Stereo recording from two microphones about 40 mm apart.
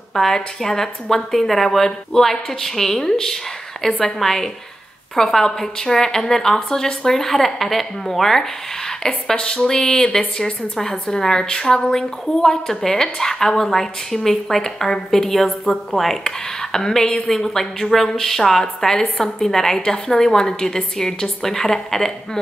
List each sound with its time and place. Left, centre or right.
0.1 s a woman's voice: centre